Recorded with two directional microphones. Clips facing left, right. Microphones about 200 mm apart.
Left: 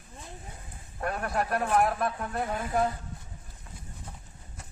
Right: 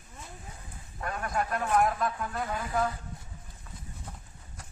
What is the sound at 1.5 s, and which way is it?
Speech, 35° left (ahead or behind).